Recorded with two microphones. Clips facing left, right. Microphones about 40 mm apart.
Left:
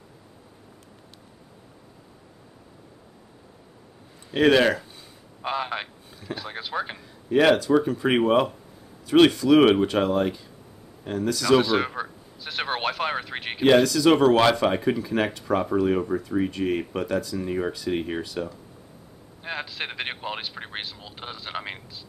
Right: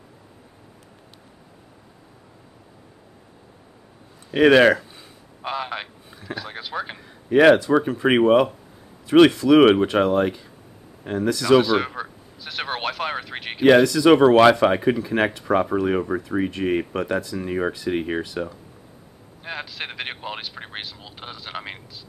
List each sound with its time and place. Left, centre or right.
4.3 s speech: right
5.4 s a sound: centre
6.0 s boat: centre
6.3 s vehicle: centre
7.0 s speech: right
11.5 s a sound: centre
13.7 s speech: centre
19.4 s a man's voice: centre